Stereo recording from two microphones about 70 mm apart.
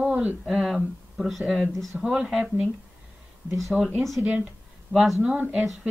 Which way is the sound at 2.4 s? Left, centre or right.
Centre.